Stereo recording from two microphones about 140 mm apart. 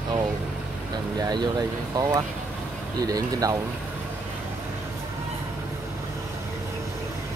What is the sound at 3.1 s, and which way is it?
Speech, 25° right (ahead or behind).